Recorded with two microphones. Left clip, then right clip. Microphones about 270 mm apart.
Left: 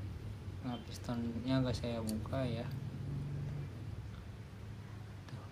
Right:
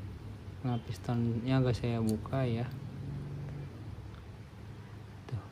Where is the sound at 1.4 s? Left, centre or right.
Right.